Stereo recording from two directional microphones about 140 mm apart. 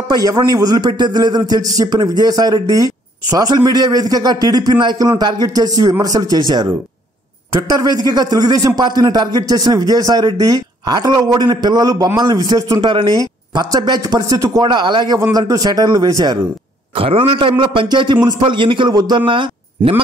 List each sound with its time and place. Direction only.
0.1 s a man's voice: 30° right (ahead or behind)
12.9 s a man's voice: 35° right (ahead or behind)
16.9 s a man's voice: 40° right (ahead or behind)